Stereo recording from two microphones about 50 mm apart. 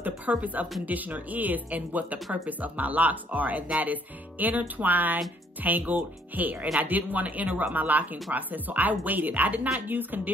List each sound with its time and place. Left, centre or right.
0.0 s speech: right